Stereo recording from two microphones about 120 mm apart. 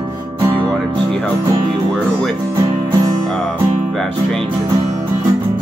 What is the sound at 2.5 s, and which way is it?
Music, 30° right (ahead or behind).